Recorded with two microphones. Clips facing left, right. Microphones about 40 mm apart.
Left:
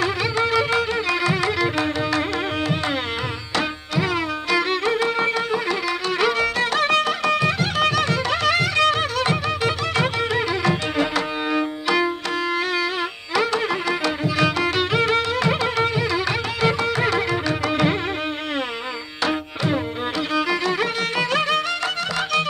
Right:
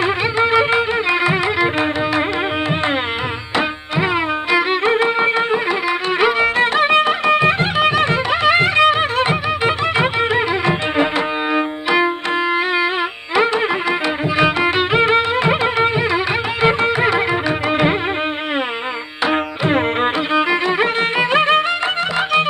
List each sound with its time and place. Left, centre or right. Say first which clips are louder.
0.0 s music: right 5 dB; right
3.5 s music: right 4 dB; right
14.3 s music: right 6 dB; right
20.3 s music: right 4 dB; right